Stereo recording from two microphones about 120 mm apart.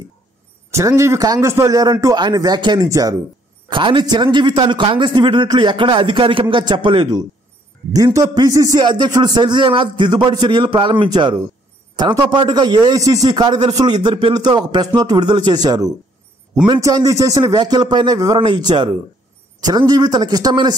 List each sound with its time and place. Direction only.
0.7 s a man's voice: 25° right (ahead or behind)
3.7 s speech: 40° right (ahead or behind)